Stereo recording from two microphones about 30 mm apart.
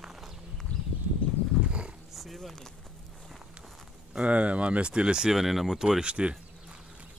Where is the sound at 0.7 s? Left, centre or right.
Left.